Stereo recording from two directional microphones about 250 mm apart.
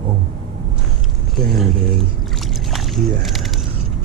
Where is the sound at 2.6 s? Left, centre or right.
Centre.